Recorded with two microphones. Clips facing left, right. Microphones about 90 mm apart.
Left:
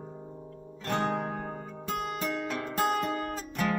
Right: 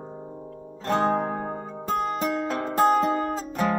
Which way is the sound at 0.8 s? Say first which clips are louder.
Right 7 dB; 30° right (ahead or behind).